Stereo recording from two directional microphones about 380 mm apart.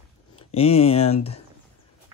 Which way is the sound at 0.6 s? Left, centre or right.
Centre.